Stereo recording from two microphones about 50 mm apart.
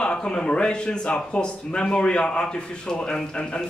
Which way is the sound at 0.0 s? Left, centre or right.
Centre.